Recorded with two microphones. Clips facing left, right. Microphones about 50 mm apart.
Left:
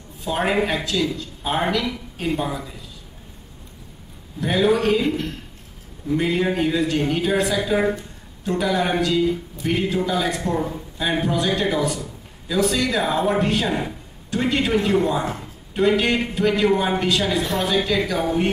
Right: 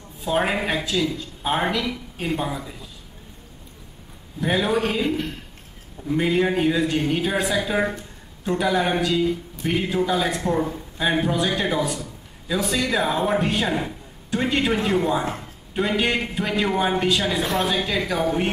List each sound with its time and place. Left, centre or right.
0.2 s a woman's voice: centre
4.4 s speech: centre
13.7 s speech: centre
14.3 s a woman's voice: centre